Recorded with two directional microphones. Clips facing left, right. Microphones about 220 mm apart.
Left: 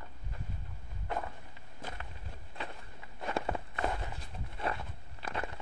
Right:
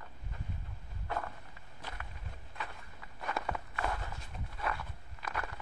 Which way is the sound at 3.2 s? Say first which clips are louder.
Left 3 dB; 30° left (ahead or behind).